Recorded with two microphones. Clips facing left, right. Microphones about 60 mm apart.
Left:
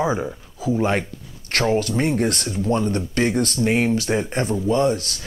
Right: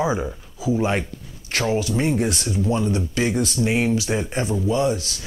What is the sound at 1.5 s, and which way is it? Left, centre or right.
Speech, left.